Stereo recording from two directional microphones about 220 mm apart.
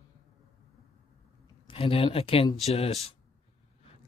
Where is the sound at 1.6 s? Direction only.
25° left (ahead or behind).